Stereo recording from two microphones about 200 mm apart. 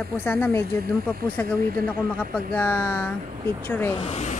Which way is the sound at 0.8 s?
45° right (ahead or behind).